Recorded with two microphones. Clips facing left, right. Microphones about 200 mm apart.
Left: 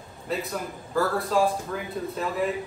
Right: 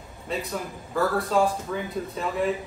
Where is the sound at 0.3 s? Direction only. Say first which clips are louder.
Even; centre (ahead or behind).